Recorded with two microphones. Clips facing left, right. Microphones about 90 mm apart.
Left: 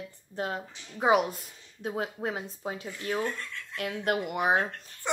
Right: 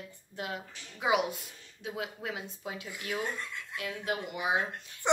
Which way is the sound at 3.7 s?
60° left (ahead or behind).